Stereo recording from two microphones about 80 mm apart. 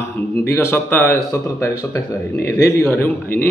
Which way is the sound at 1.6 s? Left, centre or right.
Left.